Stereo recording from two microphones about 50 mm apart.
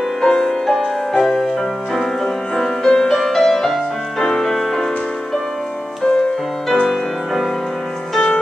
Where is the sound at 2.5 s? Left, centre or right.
Centre.